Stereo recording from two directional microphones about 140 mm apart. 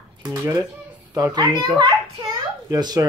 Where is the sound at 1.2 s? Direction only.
30° right (ahead or behind).